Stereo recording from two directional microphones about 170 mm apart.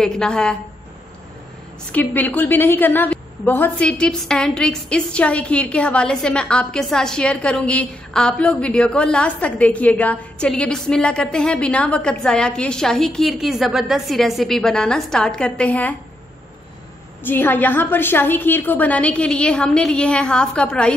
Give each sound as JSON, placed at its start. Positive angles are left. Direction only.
{"t": 0.0, "sound": "a woman's voice", "side_deg": 5}
{"t": 1.9, "sound": "a woman's voice", "side_deg": 10}
{"t": 17.2, "sound": "a woman's voice", "side_deg": 10}